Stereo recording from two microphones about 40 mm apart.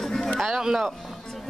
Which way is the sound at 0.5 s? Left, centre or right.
Centre.